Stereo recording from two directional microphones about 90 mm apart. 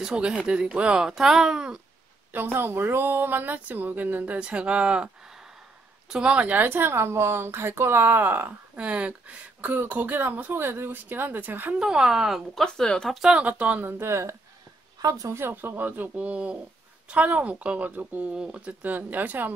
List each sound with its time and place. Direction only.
0.0 s speech: 10° right (ahead or behind)
2.3 s a woman's voice: 25° right (ahead or behind)
11.8 s speech: 5° right (ahead or behind)
12.6 s speech: 5° left (ahead or behind)
13.2 s speech: 15° right (ahead or behind)
13.9 s speech: 30° right (ahead or behind)
15.0 s a woman's voice: 40° right (ahead or behind)
15.4 s a woman's voice: 25° right (ahead or behind)